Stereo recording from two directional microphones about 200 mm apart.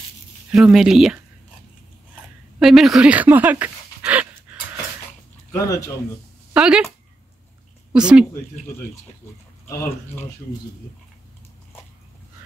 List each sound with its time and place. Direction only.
0.5 s speech: centre (ahead or behind)
2.6 s speech: centre (ahead or behind)
5.5 s speech: 15° left (ahead or behind)
6.5 s speech: 5° right (ahead or behind)
7.9 s speech: 5° right (ahead or behind)